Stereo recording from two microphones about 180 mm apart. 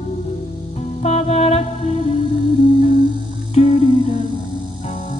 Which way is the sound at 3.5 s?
35° left (ahead or behind).